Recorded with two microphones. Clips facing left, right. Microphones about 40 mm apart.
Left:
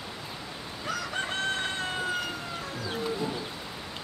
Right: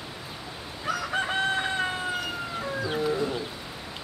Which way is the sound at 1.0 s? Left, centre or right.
Centre.